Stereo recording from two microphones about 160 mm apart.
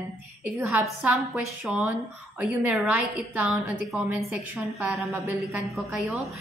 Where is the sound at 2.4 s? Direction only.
Centre (ahead or behind).